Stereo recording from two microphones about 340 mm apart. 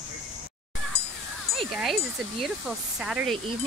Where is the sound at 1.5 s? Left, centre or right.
Centre.